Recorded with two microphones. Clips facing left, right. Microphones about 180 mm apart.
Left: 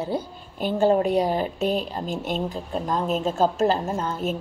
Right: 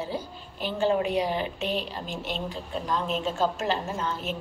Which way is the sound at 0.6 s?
45° left (ahead or behind).